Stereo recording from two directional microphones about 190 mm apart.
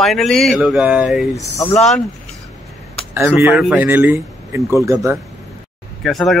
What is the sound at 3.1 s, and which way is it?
Speech, 15° right (ahead or behind).